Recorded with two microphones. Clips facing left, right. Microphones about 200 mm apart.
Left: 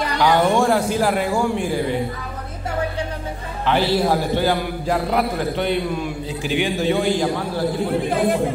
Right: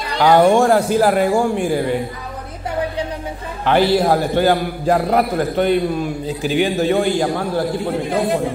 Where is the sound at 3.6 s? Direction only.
50° right (ahead or behind).